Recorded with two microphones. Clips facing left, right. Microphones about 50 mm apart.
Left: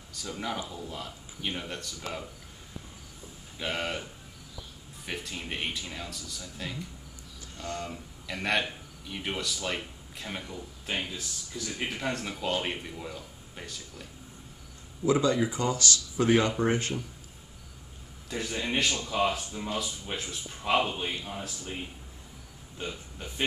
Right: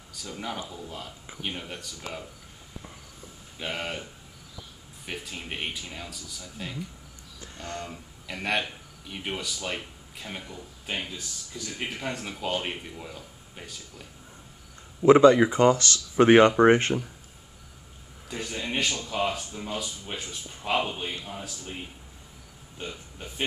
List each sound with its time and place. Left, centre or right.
0.1 s speech: centre
3.5 s speech: centre
5.0 s speech: centre
7.3 s speech: right
7.9 s a man's voice: centre
15.0 s speech: right
18.3 s speech: centre